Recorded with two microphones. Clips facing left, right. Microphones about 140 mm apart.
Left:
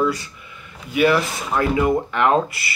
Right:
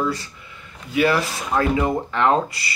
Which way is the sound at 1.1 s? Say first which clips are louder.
Left 2 dB; 25° right (ahead or behind).